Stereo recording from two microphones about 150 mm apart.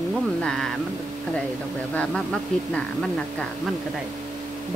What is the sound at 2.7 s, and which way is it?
Speech, 5° left (ahead or behind).